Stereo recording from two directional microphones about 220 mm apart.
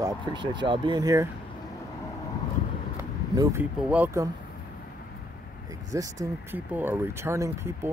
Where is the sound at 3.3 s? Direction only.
15° right (ahead or behind).